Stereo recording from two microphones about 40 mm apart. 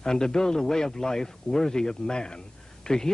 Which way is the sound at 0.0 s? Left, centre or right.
Centre.